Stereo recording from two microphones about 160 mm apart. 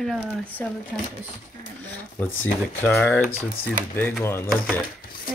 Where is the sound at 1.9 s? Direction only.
15° left (ahead or behind).